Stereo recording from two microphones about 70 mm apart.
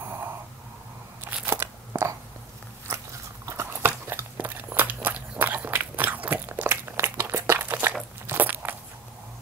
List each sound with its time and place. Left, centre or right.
1.4 s crunch: right
2.9 s biting: right
3.4 s a sound: right
5.4 s biting: right
7.5 s a sound: right
8.3 s crackle: right